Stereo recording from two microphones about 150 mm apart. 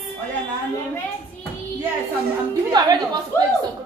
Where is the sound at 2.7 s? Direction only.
25° right (ahead or behind).